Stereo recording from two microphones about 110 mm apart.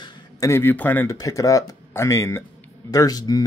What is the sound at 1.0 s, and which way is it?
Speech, 30° left (ahead or behind).